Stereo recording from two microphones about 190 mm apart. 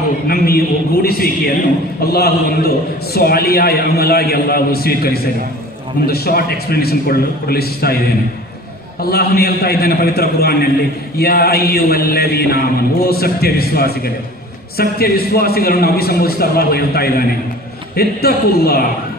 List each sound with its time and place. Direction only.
0.3 s a man's voice: 50° left (ahead or behind)